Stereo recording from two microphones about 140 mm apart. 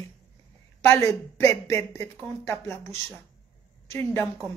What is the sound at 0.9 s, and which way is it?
Speech, 15° left (ahead or behind).